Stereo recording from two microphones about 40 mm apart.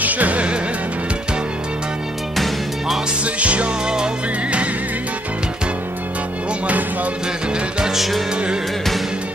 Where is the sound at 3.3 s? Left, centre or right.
Right.